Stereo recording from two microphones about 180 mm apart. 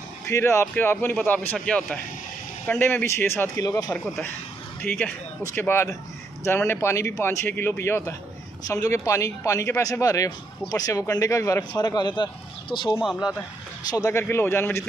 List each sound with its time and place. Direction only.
0.3 s a man's voice: 15° left (ahead or behind)
3.9 s a man's voice: 5° left (ahead or behind)